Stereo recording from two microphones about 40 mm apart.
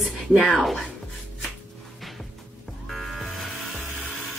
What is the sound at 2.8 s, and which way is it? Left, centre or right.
Music, centre.